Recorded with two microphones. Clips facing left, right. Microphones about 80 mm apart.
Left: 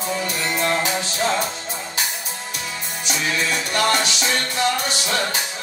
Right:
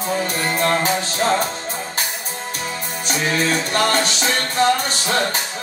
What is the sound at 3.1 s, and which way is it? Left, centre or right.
Music, right.